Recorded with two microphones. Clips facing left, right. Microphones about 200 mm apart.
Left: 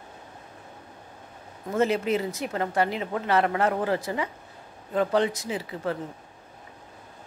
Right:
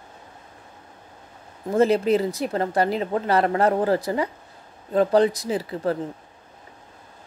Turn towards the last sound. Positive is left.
turn(degrees=-40)  # may be behind; listen again after turning